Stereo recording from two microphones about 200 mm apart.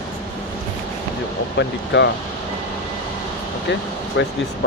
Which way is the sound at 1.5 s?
60° left (ahead or behind).